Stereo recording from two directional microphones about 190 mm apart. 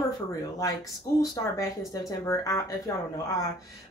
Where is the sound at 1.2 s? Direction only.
20° left (ahead or behind).